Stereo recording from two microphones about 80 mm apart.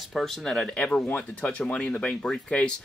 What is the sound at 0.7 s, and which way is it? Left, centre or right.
Speech, centre.